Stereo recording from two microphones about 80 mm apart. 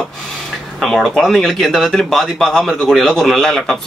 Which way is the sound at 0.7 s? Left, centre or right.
Centre.